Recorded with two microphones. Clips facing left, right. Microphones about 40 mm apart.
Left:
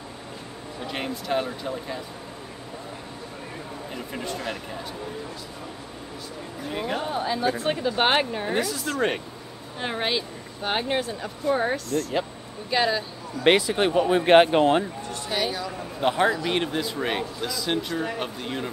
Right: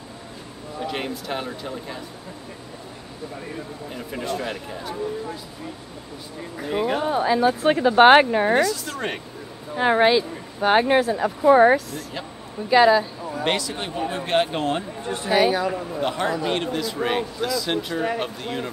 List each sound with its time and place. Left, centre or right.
0.8 s speech: centre
3.9 s speech: centre
6.6 s a woman's voice: centre
7.7 s speech: right
8.5 s speech: centre
9.8 s speech: right
10.0 s speech: centre
11.1 s speech: right
11.7 s a woman's voice: centre
13.4 s speech: left
14.5 s a man's voice: centre
15.0 s speech: right
16.0 s a man's voice: centre